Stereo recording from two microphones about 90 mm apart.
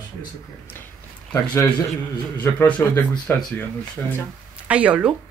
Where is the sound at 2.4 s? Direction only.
20° left (ahead or behind).